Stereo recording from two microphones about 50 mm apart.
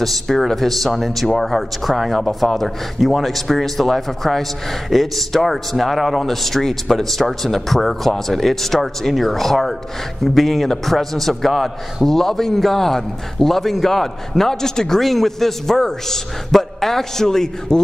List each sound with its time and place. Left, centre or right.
0.0 s a man's voice: centre